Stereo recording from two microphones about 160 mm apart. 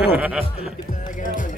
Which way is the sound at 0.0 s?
10° right (ahead or behind).